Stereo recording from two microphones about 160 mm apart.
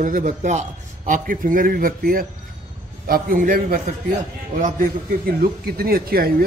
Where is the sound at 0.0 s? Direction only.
55° right (ahead or behind).